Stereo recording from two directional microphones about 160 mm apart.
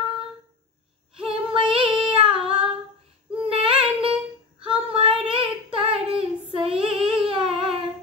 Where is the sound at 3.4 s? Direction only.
35° right (ahead or behind).